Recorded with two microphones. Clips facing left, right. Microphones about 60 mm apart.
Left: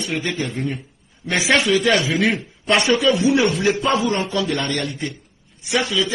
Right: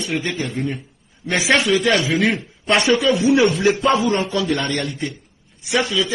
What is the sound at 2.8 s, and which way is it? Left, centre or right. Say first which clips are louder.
Speech: even; centre.